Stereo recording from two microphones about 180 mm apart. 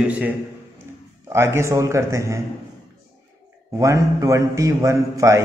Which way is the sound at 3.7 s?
15° right (ahead or behind).